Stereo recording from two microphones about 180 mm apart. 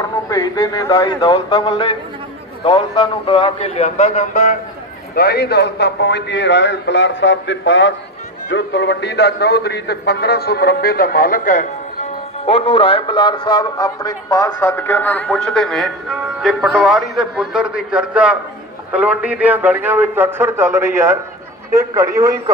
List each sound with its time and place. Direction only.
0.3 s a man's voice: 20° left (ahead or behind); by 4.6 s 40° left (ahead or behind)
5.1 s a man's voice: 65° left (ahead or behind); by 7.9 s 90° left
8.5 s a man's voice: 75° left (ahead or behind); by 12.1 s 45° left (ahead or behind)
12.4 s a man's voice: 30° left (ahead or behind); by 22.4 s 20° right (ahead or behind)